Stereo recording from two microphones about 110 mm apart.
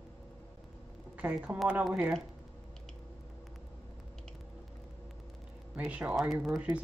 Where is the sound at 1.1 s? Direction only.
15° right (ahead or behind).